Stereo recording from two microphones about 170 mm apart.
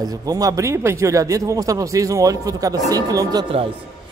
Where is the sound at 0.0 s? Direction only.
20° right (ahead or behind).